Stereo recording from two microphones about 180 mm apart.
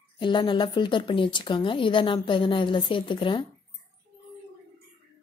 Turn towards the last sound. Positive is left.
turn(degrees=30)  # may be behind; listen again after turning